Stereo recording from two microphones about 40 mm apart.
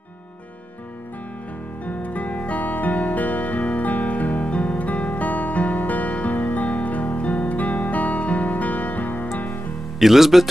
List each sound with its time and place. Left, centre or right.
1.9 s music: left
9.9 s speech: centre